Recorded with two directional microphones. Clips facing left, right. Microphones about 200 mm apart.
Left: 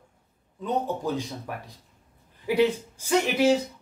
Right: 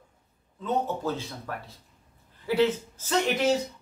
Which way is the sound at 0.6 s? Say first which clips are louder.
Left 1 dB; 15° left (ahead or behind).